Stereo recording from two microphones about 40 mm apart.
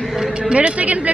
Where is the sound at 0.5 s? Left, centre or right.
Right.